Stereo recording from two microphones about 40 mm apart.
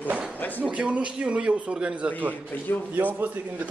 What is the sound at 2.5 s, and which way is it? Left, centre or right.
Speech, left.